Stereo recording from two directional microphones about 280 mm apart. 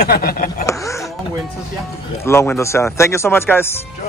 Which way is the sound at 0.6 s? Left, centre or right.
Centre.